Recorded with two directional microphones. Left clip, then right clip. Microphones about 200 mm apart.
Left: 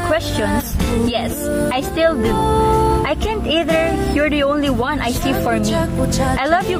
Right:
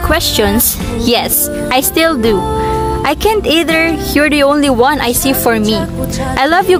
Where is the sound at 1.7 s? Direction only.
65° right (ahead or behind).